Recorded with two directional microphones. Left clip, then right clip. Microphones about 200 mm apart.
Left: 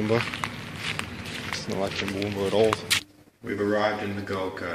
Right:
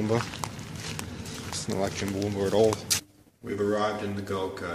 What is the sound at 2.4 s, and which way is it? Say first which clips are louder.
Speech: left 1 dB; 20° right (ahead or behind).